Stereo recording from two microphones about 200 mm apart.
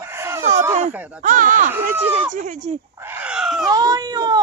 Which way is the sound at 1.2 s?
40° right (ahead or behind).